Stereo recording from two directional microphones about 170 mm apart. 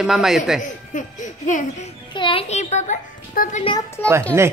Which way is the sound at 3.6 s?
25° left (ahead or behind).